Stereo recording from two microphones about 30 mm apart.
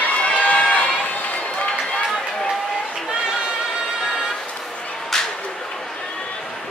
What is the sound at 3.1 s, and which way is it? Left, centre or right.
Chatter, right.